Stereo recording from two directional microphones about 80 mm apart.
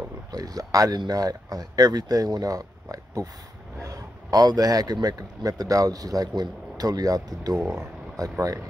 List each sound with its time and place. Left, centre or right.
0.3 s speech: right